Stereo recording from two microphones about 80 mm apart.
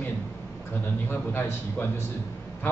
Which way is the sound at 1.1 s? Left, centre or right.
Left.